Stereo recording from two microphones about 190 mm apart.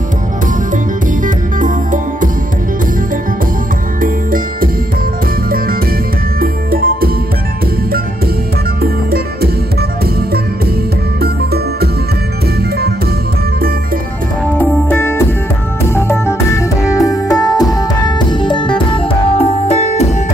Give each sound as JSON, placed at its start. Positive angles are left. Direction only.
{"t": 1.2, "sound": "music", "side_deg": -45}
{"t": 4.0, "sound": "music", "side_deg": -45}
{"t": 6.4, "sound": "music", "side_deg": -50}
{"t": 8.8, "sound": "music", "side_deg": -55}
{"t": 11.1, "sound": "music", "side_deg": -55}
{"t": 14.5, "sound": "music", "side_deg": 10}